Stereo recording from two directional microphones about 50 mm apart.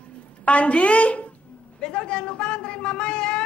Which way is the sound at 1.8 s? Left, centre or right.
Centre.